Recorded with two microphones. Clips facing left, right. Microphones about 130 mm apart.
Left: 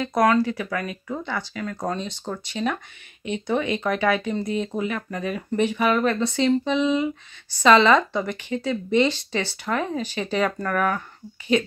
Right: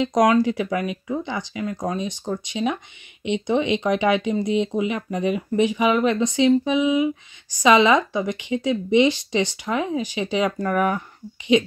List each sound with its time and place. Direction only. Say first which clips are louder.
0.0 s speech: right 2 dB; 15° right (ahead or behind)